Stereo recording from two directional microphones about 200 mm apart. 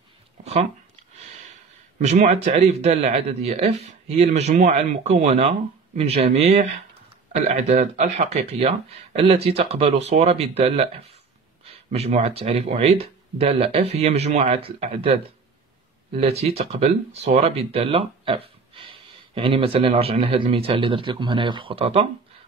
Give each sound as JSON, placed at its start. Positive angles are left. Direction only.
{"t": 2.0, "sound": "speech", "side_deg": -35}